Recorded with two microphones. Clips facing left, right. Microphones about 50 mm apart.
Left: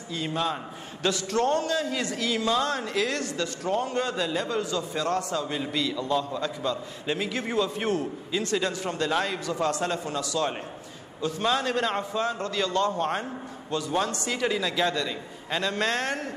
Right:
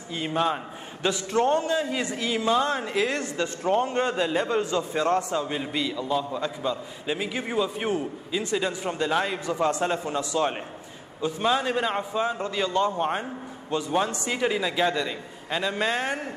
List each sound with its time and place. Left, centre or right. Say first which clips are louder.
0.1 s a man's voice: right 3 dB; right